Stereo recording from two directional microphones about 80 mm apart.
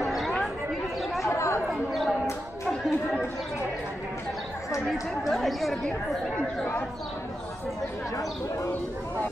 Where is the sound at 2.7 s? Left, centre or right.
Centre.